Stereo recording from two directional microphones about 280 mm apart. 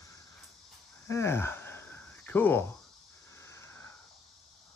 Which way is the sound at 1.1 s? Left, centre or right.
Centre.